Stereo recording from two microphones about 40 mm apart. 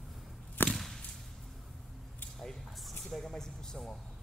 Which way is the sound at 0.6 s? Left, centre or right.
Left.